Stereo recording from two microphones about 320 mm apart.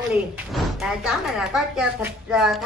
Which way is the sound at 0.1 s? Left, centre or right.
Centre.